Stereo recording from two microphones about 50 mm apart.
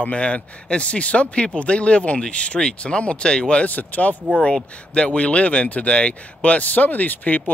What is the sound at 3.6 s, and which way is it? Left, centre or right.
Speech, left.